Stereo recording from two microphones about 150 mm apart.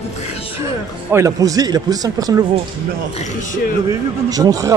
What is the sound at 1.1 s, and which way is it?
Speech, 20° right (ahead or behind).